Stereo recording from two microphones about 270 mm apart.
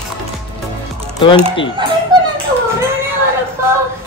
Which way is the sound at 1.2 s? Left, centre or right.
Centre.